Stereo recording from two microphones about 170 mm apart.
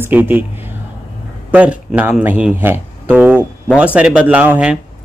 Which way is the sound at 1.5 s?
10° right (ahead or behind).